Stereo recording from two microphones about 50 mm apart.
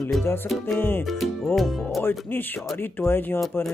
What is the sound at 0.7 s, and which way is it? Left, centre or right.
Music, left.